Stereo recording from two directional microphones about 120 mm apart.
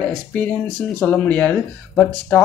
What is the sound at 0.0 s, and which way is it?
Speech, 10° left (ahead or behind).